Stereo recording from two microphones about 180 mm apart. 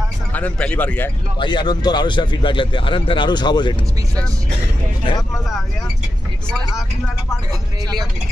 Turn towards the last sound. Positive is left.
turn(degrees=0)  # may be behind; listen again after turning